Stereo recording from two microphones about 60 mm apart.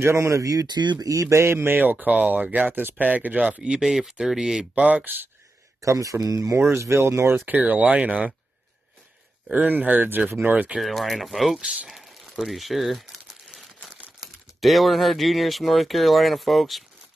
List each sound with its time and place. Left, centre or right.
0.0 s speech: right
1.8 s speech: right
3.8 s speech: centre
4.7 s speech: centre
5.8 s speech: right
6.7 s speech: right
7.4 s speech: right
9.5 s speech: right
10.8 s speech: centre
12.4 s crumpling: centre
14.2 s speech: centre